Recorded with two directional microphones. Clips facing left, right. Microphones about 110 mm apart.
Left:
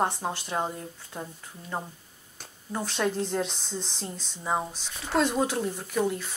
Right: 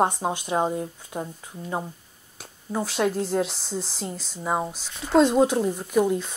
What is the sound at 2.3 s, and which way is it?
Speech, 5° right (ahead or behind).